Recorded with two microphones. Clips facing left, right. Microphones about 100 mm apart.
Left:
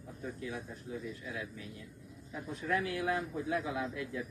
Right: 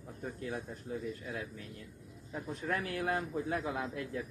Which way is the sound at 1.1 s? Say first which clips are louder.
Right 1 dB; 45° right (ahead or behind).